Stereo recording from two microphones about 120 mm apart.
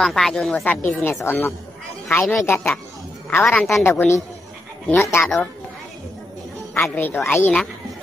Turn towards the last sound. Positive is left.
turn(degrees=15)  # may be behind; listen again after turning